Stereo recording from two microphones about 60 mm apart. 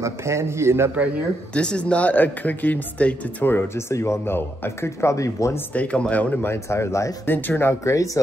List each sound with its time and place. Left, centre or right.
0.0 s a man's voice: right
1.5 s speech: centre
3.7 s speech: left
5.8 s speech: left
6.4 s speech: left
7.2 s speech: left
7.8 s speech: left